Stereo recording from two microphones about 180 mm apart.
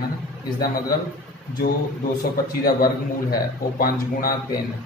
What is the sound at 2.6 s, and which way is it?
A man's voice, 55° left (ahead or behind).